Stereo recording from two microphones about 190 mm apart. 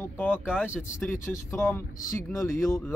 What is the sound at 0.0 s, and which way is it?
Speech, 10° left (ahead or behind).